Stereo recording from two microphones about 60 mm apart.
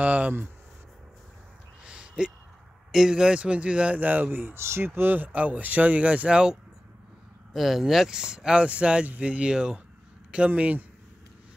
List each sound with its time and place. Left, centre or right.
0.0 s speech: right
1.9 s a sound: centre
2.9 s speech: centre; by 4.6 s right
4.6 s speech: right; by 6.6 s centre
7.5 s speech: centre; by 10.9 s right